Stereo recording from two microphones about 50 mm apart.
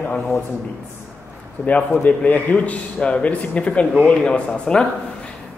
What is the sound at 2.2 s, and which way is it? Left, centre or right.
Speech, left.